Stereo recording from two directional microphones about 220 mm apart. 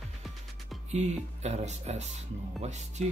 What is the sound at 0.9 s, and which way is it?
Speech, 30° right (ahead or behind).